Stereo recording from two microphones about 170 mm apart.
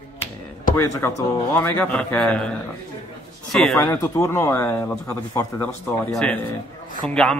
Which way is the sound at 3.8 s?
15° left (ahead or behind).